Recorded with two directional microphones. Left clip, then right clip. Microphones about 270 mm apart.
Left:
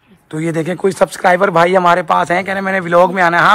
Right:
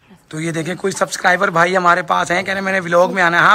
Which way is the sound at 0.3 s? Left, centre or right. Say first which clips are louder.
Left 4 dB; centre.